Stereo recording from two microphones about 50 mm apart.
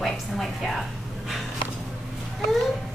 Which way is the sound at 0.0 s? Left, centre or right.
Centre.